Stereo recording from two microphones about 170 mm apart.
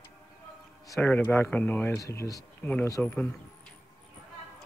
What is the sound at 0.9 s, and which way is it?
Speech, 10° left (ahead or behind).